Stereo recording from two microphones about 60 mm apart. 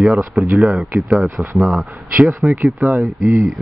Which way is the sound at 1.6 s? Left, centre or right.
Centre.